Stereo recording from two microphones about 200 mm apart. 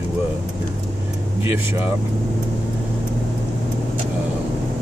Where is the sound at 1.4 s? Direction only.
10° right (ahead or behind).